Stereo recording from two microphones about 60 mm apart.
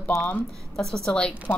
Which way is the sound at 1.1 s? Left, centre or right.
Centre.